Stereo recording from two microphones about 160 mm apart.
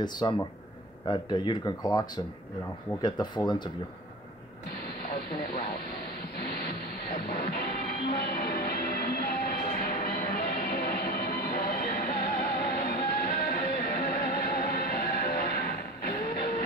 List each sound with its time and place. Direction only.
0.0 s speech: 25° left (ahead or behind)
4.8 s a sound: 70° left (ahead or behind)
6.3 s music: 75° left (ahead or behind)